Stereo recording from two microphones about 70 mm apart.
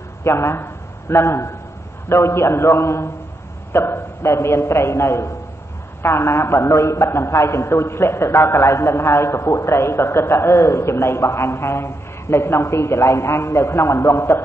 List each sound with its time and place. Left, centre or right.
0.2 s a man's voice: left